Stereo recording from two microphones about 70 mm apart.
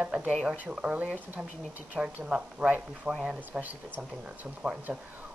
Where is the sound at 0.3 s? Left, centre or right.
Centre.